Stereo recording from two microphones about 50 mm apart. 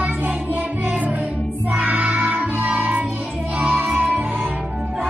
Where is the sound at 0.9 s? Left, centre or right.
Right.